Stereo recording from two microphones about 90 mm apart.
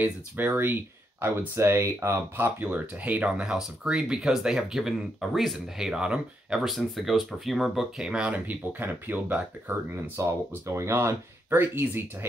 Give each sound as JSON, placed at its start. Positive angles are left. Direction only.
{"t": 0.0, "sound": "speech", "side_deg": -20}
{"t": 10.2, "sound": "speech", "side_deg": -35}